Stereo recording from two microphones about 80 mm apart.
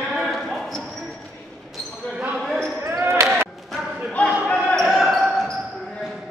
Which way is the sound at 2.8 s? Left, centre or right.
Right.